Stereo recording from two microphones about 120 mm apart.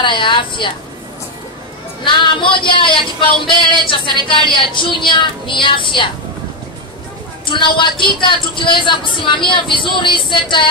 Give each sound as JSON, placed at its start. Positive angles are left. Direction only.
{"t": 0.0, "sound": "a woman's voice", "side_deg": 45}
{"t": 2.0, "sound": "a woman's voice", "side_deg": 40}
{"t": 7.4, "sound": "a woman's voice", "side_deg": 45}